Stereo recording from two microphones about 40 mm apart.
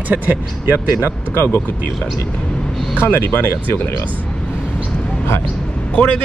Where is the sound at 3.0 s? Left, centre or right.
Left.